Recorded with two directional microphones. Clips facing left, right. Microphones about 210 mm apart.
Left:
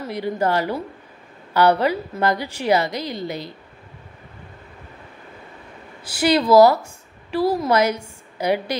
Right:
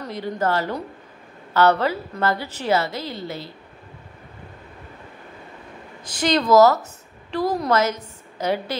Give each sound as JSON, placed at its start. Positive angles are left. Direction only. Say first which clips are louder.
{"t": 0.0, "sound": "a woman's voice", "louder": "left 2 dB", "side_deg": 10}
{"t": 6.0, "sound": "a woman's voice", "louder": "left 2 dB", "side_deg": 10}